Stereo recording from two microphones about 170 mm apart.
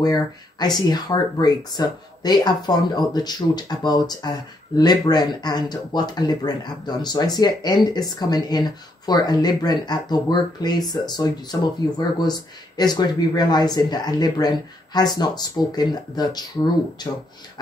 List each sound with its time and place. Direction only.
0.0 s speech: 25° left (ahead or behind)